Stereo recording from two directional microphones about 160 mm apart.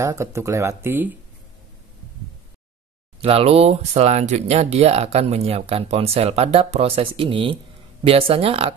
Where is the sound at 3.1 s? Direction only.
35° right (ahead or behind).